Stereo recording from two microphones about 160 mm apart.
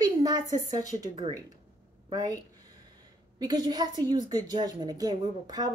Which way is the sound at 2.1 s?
25° right (ahead or behind).